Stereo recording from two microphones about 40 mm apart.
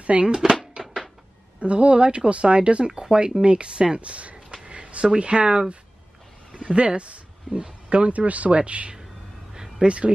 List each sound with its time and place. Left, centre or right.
0.0 s speech: right
0.3 s speech: centre
1.6 s speech: right
4.5 s a sound: right
6.6 s speech: right
9.5 s a sound: centre
9.8 s speech: right